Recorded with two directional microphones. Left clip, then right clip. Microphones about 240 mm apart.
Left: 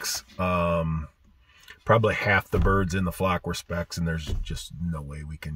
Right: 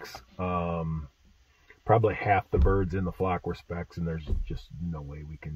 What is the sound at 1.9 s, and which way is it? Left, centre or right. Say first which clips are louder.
Speech: left 2 dB; centre.